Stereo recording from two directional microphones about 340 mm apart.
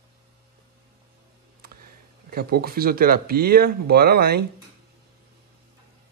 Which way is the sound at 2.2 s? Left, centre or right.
Right.